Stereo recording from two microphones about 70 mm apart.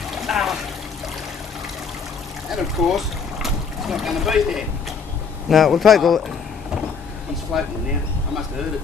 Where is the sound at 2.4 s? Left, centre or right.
Centre.